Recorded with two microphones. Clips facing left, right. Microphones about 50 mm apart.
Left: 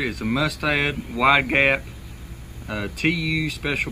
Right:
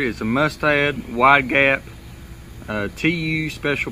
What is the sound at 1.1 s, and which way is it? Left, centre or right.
Speech, right.